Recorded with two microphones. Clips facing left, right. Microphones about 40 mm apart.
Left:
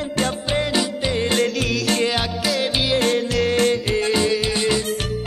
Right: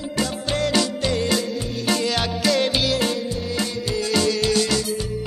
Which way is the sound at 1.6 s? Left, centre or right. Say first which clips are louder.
Left 6 dB; left.